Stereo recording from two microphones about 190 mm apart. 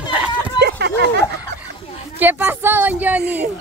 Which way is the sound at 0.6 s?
65° right (ahead or behind).